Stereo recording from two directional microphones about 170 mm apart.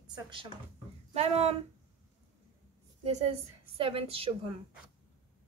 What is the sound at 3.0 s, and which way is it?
A woman's voice, 35° right (ahead or behind).